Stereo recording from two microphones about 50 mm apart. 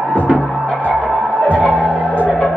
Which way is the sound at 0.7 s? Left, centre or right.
Left.